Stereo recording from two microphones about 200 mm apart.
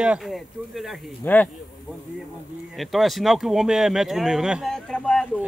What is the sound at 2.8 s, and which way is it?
Speech, centre (ahead or behind).